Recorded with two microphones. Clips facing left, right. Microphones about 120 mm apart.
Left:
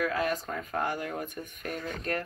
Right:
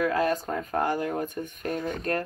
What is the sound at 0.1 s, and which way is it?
Speech, 35° right (ahead or behind).